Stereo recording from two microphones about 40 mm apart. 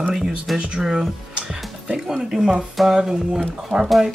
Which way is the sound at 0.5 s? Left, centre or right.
Right.